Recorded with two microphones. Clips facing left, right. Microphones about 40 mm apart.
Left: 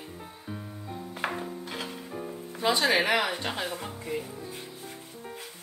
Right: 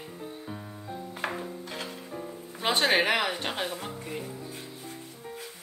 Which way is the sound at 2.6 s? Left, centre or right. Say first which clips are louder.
Even; right.